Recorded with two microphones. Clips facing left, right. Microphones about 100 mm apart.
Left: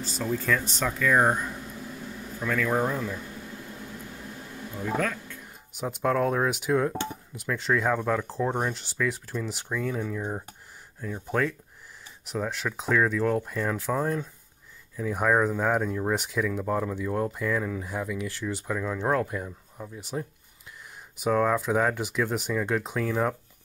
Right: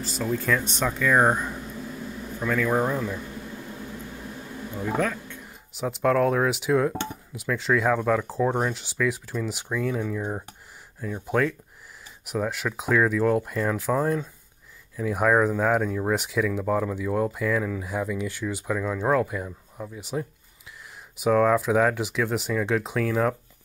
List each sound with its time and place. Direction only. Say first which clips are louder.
0.1 s speech: right 2 dB; centre (ahead or behind)
0.7 s speech: right 2 dB; 20° right (ahead or behind)
2.4 s speech: right 2 dB; 15° right (ahead or behind)
5.0 s music: right 2 dB; 15° right (ahead or behind)
6.0 s speech: right 3 dB; centre (ahead or behind)
18.0 s speech: right 3 dB; 25° right (ahead or behind)
18.5 s speech: right 2 dB; 5° right (ahead or behind)
21.2 s speech: right 4 dB; centre (ahead or behind)